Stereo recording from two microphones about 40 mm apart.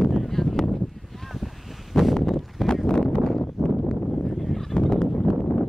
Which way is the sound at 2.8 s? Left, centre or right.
Centre.